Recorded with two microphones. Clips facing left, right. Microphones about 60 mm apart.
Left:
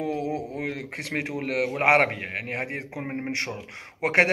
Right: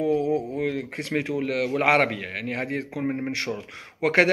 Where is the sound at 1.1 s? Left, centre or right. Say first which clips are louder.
Right 2 dB; left.